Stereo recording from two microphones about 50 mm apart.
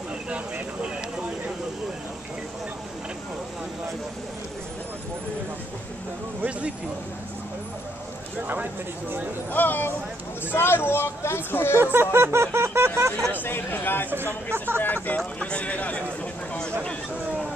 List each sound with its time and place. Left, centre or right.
8.4 s speech: right
9.5 s speech: left
11.8 s speech: right
13.3 s speech: left
14.1 s speech: right
15.1 s speech: left